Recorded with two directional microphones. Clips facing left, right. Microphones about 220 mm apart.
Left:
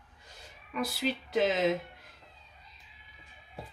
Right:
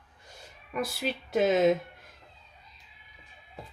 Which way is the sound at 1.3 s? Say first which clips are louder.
Right 5 dB; 50° right (ahead or behind).